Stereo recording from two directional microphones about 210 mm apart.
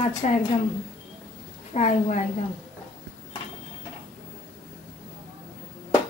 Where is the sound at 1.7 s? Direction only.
35° left (ahead or behind).